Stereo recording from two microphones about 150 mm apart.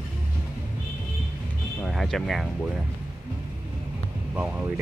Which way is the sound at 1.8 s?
Centre (ahead or behind).